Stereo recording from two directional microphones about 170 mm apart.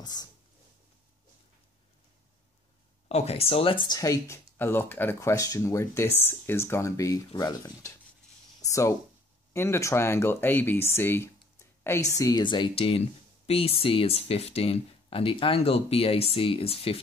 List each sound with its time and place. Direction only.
0.0 s speech: 25° left (ahead or behind)
3.1 s speech: 40° left (ahead or behind)